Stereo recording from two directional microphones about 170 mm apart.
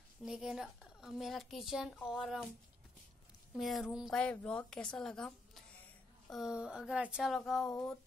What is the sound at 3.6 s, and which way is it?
A woman's voice, centre (ahead or behind).